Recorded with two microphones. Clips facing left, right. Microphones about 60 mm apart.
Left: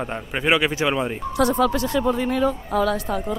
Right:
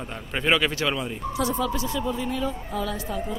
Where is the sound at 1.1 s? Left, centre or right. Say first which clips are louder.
Left 6 dB; left.